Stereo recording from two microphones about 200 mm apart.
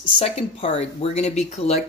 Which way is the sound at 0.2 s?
30° left (ahead or behind).